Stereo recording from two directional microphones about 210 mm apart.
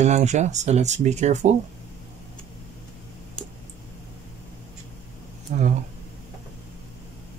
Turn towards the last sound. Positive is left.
turn(degrees=-35)  # may be behind; listen again after turning